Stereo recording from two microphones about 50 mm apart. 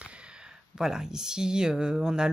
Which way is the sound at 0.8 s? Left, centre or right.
Centre.